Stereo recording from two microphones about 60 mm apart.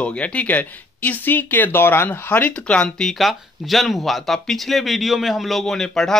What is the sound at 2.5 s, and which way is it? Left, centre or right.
Speech, centre.